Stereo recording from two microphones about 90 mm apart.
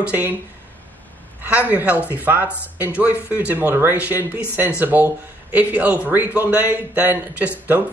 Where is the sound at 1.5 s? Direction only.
15° right (ahead or behind).